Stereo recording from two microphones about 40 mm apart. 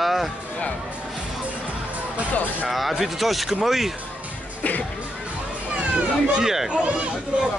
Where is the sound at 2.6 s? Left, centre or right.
Centre.